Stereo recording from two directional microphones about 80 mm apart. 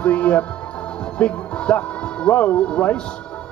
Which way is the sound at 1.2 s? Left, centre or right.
Centre.